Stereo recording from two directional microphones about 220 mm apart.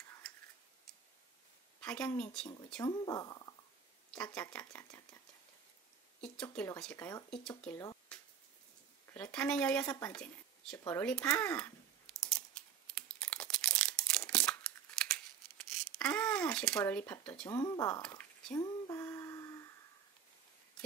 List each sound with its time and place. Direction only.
1.8 s speech: 5° left (ahead or behind)
2.8 s speech: 15° left (ahead or behind)
4.1 s speech: 5° left (ahead or behind)
6.5 s speech: 5° left (ahead or behind)
8.1 s a sound: 5° left (ahead or behind)
9.1 s speech: 5° left (ahead or behind)
10.8 s typing: 10° left (ahead or behind)
18.0 s a sound: 5° left (ahead or behind)